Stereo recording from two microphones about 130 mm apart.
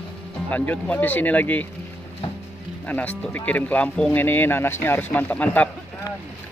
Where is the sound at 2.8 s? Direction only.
15° left (ahead or behind).